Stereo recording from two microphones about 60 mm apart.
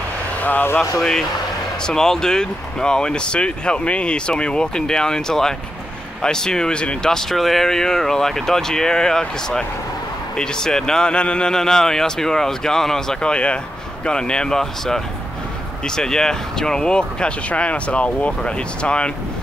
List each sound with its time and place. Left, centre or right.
0.4 s speech: left
0.9 s speech: centre